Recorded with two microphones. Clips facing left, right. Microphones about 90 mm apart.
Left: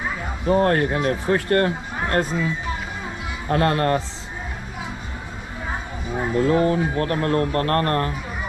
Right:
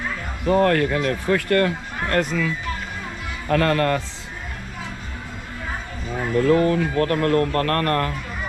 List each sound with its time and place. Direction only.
0.0 s music: 20° left (ahead or behind)
1.1 s speech: 20° left (ahead or behind)
6.2 s speech: 20° left (ahead or behind)